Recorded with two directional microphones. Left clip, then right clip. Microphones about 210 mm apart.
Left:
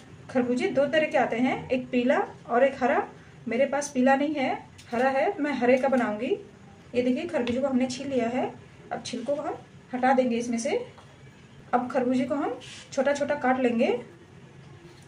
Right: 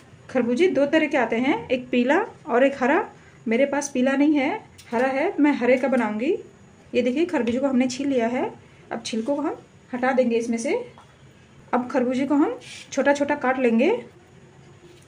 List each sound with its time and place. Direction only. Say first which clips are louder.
0.3 s a woman's voice: right 6 dB; 40° right (ahead or behind)